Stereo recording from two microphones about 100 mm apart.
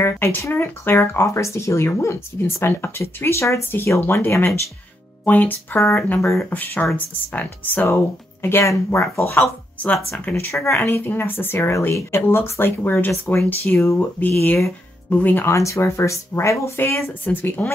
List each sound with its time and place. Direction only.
0.0 s speech: 25° left (ahead or behind)
15.0 s speech: 15° left (ahead or behind)
15.5 s speech: 30° left (ahead or behind)